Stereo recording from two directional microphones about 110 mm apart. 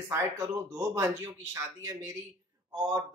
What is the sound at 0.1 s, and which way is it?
A man's voice, 30° right (ahead or behind).